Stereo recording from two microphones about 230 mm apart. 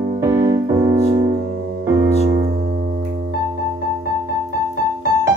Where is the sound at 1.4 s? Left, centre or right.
Right.